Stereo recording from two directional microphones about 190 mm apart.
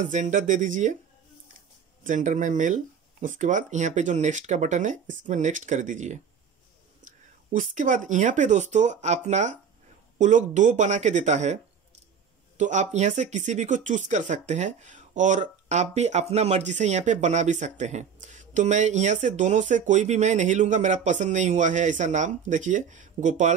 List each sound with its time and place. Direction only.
0.0 s speech: 40° right (ahead or behind)
2.0 s speech: 40° right (ahead or behind)